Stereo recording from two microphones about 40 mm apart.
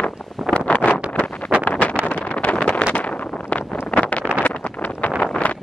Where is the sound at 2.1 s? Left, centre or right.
Left.